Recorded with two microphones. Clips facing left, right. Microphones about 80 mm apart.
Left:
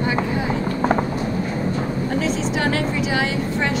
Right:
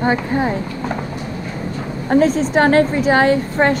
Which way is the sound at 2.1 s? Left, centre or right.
Right.